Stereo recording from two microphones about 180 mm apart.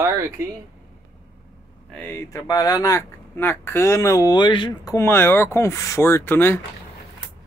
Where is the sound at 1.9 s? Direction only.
10° left (ahead or behind); by 4.9 s 25° left (ahead or behind).